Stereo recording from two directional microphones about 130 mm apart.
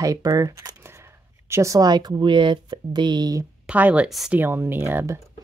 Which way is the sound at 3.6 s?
10° right (ahead or behind).